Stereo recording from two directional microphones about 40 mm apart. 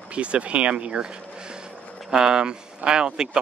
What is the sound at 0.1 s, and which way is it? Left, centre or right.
Speech, right.